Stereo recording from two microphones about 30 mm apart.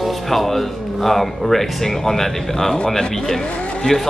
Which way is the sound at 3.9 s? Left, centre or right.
Left.